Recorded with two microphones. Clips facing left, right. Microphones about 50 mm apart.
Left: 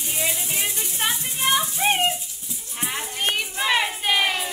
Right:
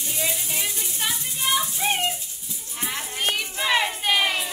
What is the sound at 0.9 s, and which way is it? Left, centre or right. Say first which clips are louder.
Music: left 4 dB; left.